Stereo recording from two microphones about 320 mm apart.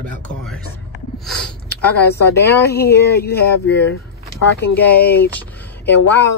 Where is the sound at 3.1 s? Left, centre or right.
Left.